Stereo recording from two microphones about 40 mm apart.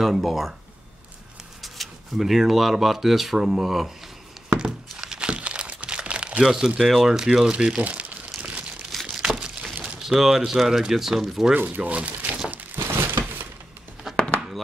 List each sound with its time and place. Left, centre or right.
0.0 s speech: centre
1.6 s speech: centre
3.3 s speech: centre
4.6 s a sound: centre
5.3 s crumpling: right
6.4 s speech: centre
7.1 s speech: centre
7.8 s crumpling: right
9.0 s crumpling: centre
9.9 s speech: centre
11.5 s speech: right
11.9 s speech: right
12.7 s a sound: right
14.1 s a sound: centre